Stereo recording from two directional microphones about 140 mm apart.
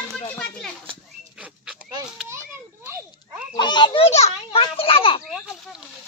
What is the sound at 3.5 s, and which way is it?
Children playing, 35° left (ahead or behind).